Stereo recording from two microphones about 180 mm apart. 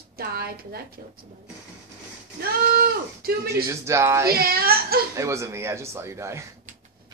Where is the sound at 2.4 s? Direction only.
55° right (ahead or behind).